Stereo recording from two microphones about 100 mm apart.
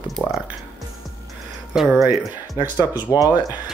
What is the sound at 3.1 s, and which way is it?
Speech, 35° left (ahead or behind).